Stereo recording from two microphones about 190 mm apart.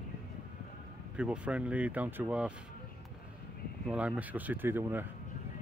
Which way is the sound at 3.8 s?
5° right (ahead or behind).